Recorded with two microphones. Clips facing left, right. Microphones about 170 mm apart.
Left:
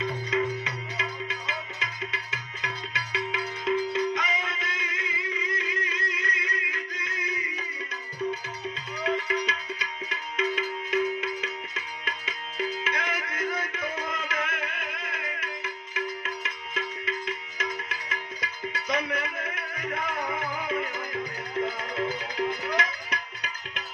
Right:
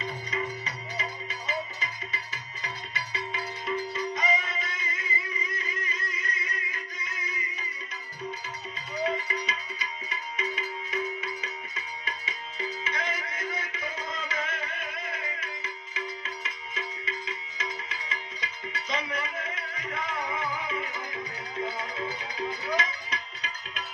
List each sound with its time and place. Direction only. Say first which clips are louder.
0.0 s music: left 6 dB; 70° left (ahead or behind)
9.3 s music: left 5 dB; 70° left (ahead or behind)
12.3 s music: left 6 dB; 70° left (ahead or behind)
17.6 s music: left 3 dB; 60° left (ahead or behind)